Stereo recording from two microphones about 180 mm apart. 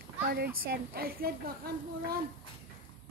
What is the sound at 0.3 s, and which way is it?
Speech, 55° right (ahead or behind).